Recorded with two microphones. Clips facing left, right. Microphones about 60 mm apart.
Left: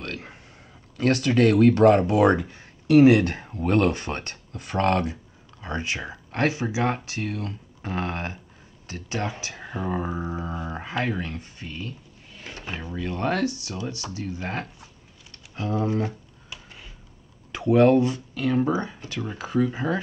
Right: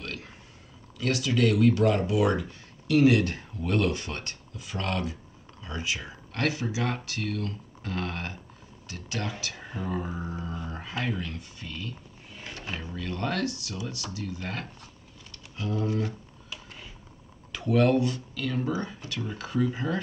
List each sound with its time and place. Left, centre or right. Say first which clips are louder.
0.0 s a sound: left 4 dB; left
0.9 s speech: left 6 dB; left
2.9 s speech: left 6 dB; left
4.6 s speech: left 9 dB; left
6.3 s speech: left 4 dB; left
17.5 s speech: left 6 dB; left